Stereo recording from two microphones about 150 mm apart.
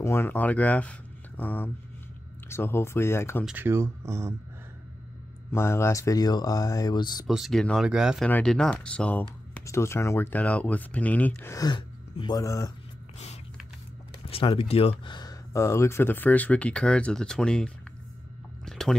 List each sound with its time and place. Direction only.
0.0 s speech: 15° left (ahead or behind)
3.4 s speech: 15° right (ahead or behind)
5.5 s speech: 15° left (ahead or behind)
7.2 s speech: centre (ahead or behind)
8.3 s speech: 5° left (ahead or behind)
9.5 s speech: 15° left (ahead or behind)
11.5 s speech: 30° left (ahead or behind)
14.3 s speech: 40° left (ahead or behind); by 17.7 s 5° left (ahead or behind)
18.7 s a sound: 5° left (ahead or behind)